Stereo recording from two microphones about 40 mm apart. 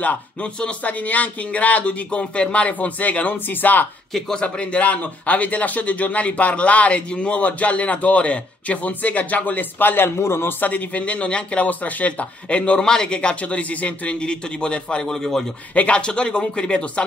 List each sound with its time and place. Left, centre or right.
0.0 s a man's voice: left
4.4 s a man's voice: left
10.6 s a man's voice: left
12.8 s speech: centre
15.0 s a man's voice: centre
15.7 s a man's voice: left